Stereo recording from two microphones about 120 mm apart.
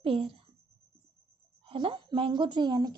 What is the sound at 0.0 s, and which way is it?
Speech, 50° right (ahead or behind).